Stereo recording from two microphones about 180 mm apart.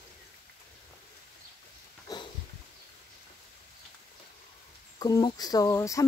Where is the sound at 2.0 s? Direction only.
25° left (ahead or behind).